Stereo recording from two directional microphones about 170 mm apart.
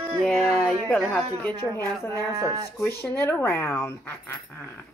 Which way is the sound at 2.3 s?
20° right (ahead or behind).